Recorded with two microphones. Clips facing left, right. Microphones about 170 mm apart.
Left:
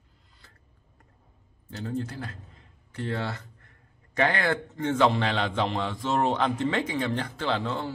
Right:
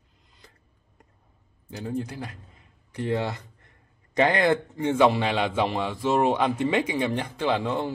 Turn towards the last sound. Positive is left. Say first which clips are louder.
# right 4 dB
turn(degrees=-15)  # may be behind; listen again after turning